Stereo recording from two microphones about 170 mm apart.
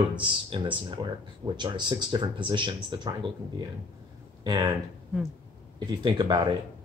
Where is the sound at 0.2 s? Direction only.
30° right (ahead or behind).